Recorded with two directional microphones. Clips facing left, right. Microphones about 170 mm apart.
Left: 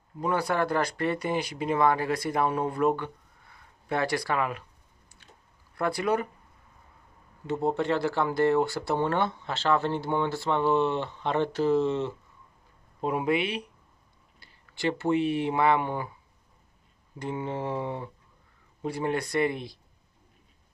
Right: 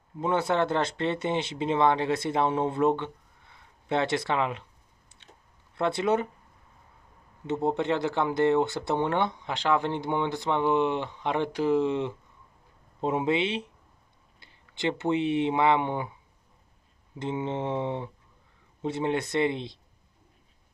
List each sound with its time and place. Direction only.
0.2 s speech: 25° right (ahead or behind)
5.2 s chewing: 25° right (ahead or behind)
5.8 s speech: 25° right (ahead or behind)
7.4 s speech: 20° right (ahead or behind)
13.0 s speech: 25° right (ahead or behind)
17.2 s speech: 20° right (ahead or behind)